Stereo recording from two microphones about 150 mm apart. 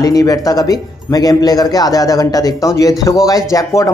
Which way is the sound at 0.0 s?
25° left (ahead or behind).